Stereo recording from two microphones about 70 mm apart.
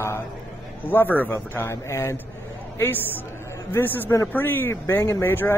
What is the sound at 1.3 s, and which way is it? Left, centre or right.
Speech, left.